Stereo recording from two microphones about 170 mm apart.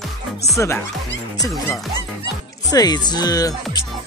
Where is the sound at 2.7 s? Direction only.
25° left (ahead or behind).